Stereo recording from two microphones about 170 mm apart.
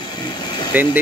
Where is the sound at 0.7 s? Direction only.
10° right (ahead or behind).